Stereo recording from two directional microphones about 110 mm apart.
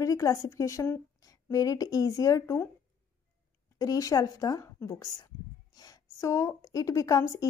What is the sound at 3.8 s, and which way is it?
A woman's voice, 30° left (ahead or behind).